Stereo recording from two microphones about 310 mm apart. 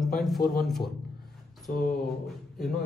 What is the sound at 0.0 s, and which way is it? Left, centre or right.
A man's voice, centre.